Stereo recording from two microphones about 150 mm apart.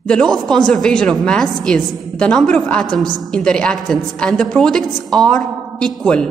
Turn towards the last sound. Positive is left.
turn(degrees=5)  # may be behind; listen again after turning